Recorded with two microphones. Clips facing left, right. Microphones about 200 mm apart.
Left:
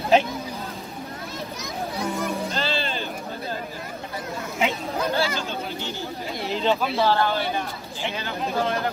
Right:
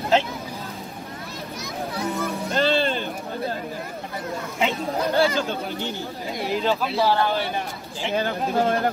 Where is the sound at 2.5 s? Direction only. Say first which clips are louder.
Right 6 dB; 55° right (ahead or behind).